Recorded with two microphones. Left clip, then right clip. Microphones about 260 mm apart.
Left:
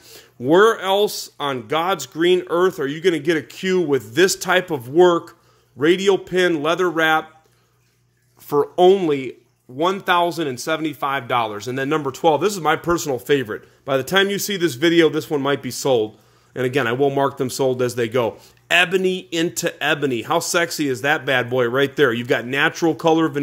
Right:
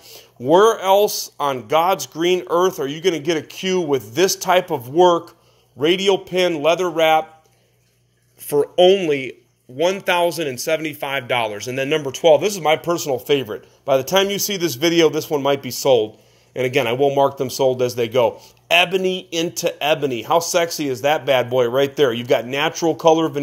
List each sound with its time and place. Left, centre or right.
0.1 s speech: left
8.7 s speech: left
9.1 s speech: centre